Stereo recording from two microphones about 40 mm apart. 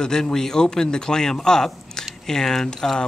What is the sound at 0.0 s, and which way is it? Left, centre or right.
A man's voice, centre.